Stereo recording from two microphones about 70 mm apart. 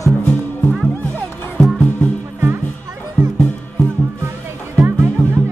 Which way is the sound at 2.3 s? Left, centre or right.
Right.